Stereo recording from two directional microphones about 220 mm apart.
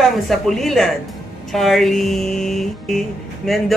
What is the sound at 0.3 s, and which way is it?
Speech, centre (ahead or behind).